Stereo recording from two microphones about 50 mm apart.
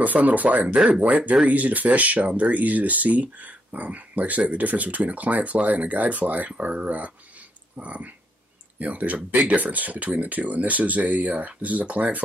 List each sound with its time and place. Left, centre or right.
0.0 s speech: right
0.7 s speech: centre